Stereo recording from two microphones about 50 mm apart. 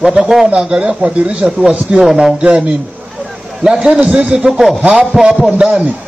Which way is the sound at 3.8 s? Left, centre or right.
Centre.